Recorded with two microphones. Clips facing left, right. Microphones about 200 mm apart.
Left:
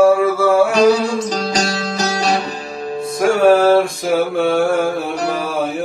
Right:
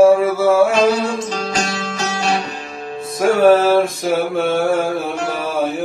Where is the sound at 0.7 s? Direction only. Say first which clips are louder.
Left 3 dB; 35° left (ahead or behind).